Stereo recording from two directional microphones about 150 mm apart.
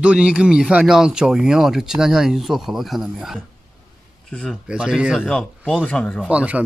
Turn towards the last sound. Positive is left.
turn(degrees=-10)  # may be behind; listen again after turning